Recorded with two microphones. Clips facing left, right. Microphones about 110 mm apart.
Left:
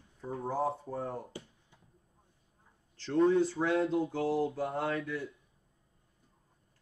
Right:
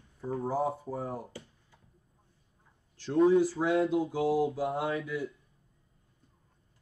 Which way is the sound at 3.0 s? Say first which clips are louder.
Right 3 dB; 5° right (ahead or behind).